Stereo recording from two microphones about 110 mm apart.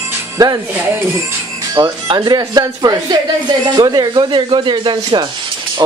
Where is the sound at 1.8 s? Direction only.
45° right (ahead or behind).